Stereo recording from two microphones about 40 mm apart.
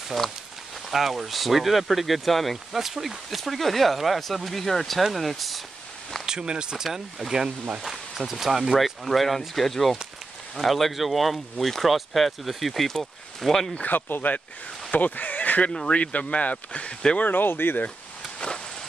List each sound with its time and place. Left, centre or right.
0.8 s speech: centre
6.2 s speech: right
7.8 s speech: centre
13.5 s speech: centre
13.7 s speech: left
14.9 s speech: left
17.2 s speech: left